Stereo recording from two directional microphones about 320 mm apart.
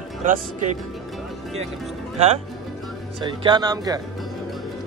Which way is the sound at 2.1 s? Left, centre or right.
Centre.